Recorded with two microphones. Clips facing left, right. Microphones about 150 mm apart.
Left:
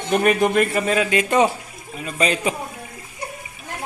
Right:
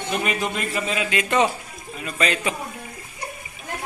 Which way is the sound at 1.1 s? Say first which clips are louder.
Left 1 dB; 25° left (ahead or behind).